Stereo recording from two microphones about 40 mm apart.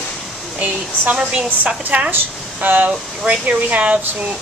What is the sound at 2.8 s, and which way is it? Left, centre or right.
Speech, right.